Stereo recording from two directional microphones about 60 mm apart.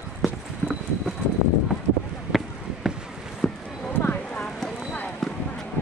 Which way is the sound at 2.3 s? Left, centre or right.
Centre.